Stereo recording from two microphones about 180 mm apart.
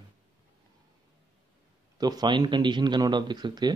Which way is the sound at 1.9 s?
20° right (ahead or behind).